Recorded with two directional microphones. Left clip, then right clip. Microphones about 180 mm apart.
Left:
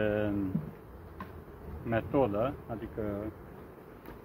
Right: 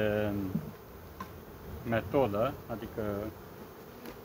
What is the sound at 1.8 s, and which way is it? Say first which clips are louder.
Speech: even; 25° left (ahead or behind).